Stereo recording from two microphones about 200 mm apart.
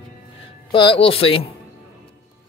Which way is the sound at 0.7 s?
25° left (ahead or behind).